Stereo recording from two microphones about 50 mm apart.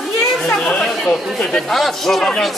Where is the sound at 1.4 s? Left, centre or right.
Centre.